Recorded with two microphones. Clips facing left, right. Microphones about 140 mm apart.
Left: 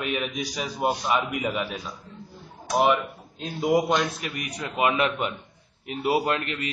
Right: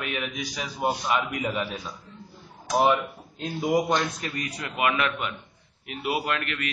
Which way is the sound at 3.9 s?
10° left (ahead or behind).